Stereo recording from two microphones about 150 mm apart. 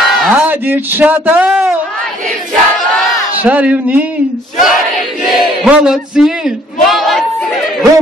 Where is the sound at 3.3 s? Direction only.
10° right (ahead or behind).